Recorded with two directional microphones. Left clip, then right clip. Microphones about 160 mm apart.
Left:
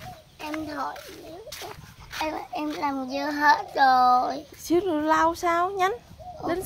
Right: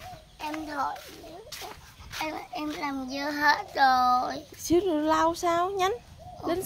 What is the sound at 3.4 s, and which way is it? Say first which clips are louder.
Child singing: left 3 dB; 40° right (ahead or behind).